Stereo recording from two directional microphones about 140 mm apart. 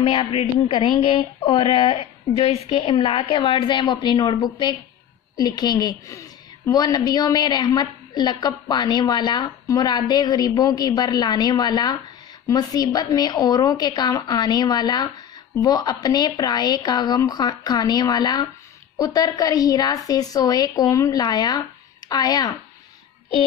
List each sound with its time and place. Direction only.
0.0 s a woman's voice: 35° left (ahead or behind)